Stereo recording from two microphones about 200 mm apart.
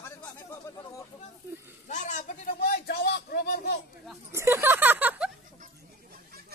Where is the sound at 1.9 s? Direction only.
40° left (ahead or behind); by 3.8 s 55° left (ahead or behind).